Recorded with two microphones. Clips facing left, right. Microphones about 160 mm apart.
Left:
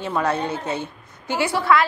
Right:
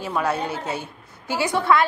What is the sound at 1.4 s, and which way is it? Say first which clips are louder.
Speech: even; 15° right (ahead or behind).